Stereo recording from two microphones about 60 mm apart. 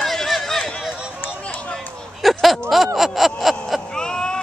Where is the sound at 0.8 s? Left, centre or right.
Centre.